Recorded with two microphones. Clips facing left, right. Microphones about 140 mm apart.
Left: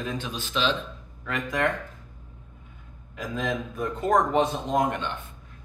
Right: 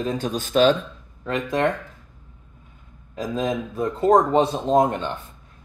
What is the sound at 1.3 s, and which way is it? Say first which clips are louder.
Speech: right 5 dB; 35° right (ahead or behind).